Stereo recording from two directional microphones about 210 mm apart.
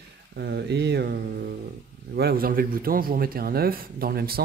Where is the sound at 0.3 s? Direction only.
50° right (ahead or behind).